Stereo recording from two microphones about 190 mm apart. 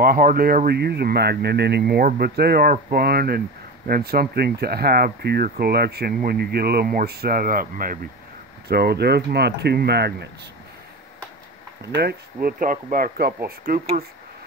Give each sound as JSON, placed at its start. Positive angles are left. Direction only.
{"t": 0.0, "sound": "speech", "side_deg": -50}
{"t": 11.9, "sound": "speech", "side_deg": -60}